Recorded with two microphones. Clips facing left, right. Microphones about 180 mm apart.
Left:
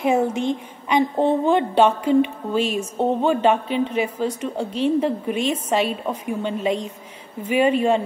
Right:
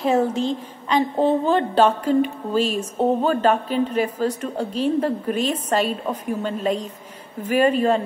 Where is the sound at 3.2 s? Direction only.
10° left (ahead or behind).